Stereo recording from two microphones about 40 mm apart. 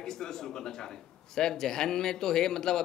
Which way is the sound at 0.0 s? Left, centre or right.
Centre.